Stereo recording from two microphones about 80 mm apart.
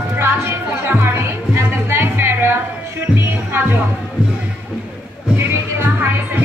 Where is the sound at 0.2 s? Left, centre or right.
Right.